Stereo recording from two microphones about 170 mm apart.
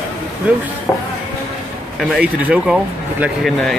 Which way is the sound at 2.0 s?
5° right (ahead or behind).